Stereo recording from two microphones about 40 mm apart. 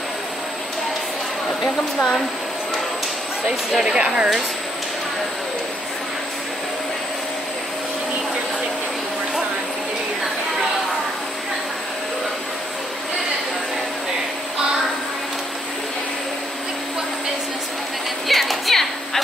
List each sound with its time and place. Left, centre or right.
2.0 s speech: centre
3.7 s speech: centre
18.3 s a sound: centre